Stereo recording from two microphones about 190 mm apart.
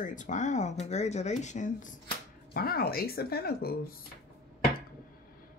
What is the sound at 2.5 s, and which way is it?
Speech, 55° left (ahead or behind).